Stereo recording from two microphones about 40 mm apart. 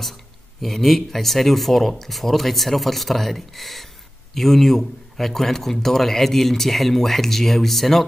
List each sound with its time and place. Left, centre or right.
0.6 s a man's voice: centre